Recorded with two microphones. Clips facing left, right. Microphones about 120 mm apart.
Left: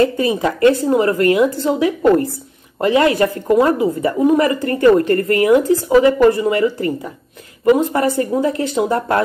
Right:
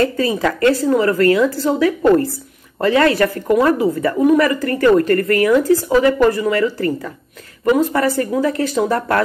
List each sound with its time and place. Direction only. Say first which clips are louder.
0.0 s a woman's voice: left 1 dB; 20° left (ahead or behind)